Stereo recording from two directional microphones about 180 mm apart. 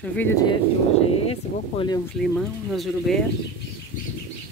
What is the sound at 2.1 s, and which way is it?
Speech, centre (ahead or behind).